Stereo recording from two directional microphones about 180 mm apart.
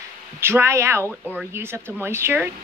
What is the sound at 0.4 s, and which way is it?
Speech, 15° right (ahead or behind).